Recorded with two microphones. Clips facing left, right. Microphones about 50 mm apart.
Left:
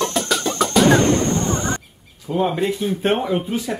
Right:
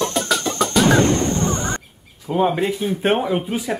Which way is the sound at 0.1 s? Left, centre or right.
Centre.